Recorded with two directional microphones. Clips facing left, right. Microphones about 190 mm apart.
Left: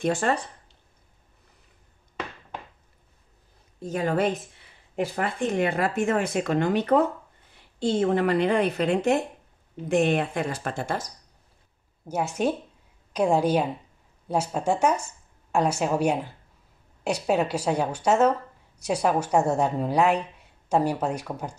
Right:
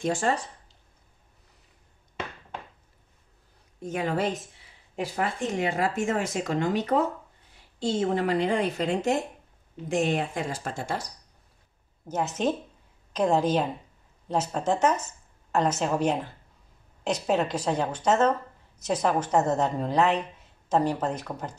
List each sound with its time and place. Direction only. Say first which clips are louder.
0.0 s speech: left 2 dB; 60° left (ahead or behind)
3.8 s a woman's voice: left 2 dB; 35° left (ahead or behind)
4.9 s speech: left 2 dB; 60° left (ahead or behind)
12.1 s a woman's voice: left 1 dB; 10° left (ahead or behind)